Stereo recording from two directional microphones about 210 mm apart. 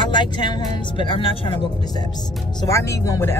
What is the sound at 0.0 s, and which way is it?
Speech, 20° left (ahead or behind).